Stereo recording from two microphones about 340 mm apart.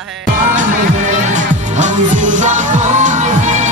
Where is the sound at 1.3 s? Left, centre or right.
Right.